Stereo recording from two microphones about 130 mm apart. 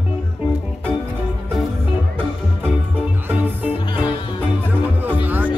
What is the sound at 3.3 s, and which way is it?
Music, 15° right (ahead or behind).